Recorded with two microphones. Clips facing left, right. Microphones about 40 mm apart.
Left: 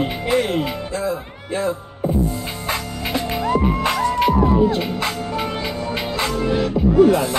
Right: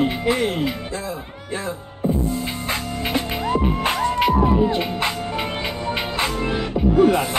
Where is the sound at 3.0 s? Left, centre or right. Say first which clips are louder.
Left 2 dB; right.